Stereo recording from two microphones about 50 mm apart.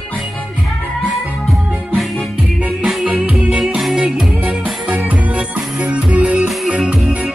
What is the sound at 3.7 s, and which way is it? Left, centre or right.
Music, centre.